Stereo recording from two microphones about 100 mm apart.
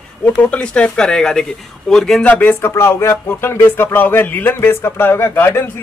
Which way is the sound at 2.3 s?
20° left (ahead or behind).